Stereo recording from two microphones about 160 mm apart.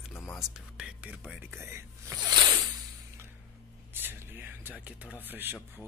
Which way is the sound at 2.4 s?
20° right (ahead or behind).